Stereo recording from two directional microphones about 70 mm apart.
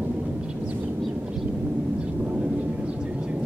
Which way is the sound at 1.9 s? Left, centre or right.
Right.